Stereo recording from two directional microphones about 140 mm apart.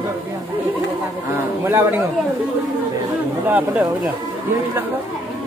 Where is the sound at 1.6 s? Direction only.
15° right (ahead or behind).